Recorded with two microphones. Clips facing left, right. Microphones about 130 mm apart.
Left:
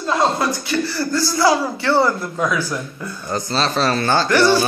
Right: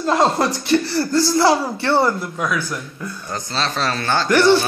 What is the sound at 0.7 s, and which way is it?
Speech, 30° right (ahead or behind).